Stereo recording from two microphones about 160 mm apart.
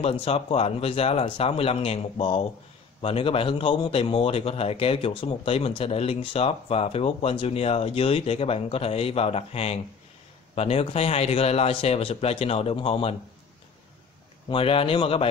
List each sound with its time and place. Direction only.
0.0 s speech: 35° left (ahead or behind)
14.5 s speech: 35° left (ahead or behind)